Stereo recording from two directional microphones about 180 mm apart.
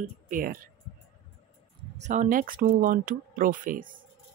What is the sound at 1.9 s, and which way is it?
Speech, 40° right (ahead or behind).